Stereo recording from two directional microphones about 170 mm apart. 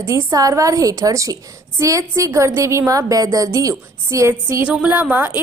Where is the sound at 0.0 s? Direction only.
20° right (ahead or behind).